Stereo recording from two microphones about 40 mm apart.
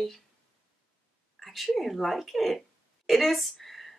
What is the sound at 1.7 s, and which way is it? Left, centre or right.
A woman's voice, centre.